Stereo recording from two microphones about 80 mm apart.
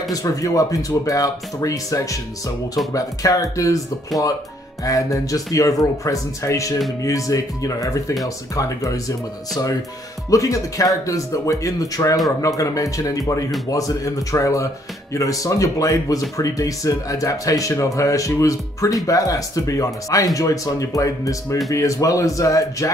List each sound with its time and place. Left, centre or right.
0.1 s speech: left
4.8 s speech: left
10.3 s speech: left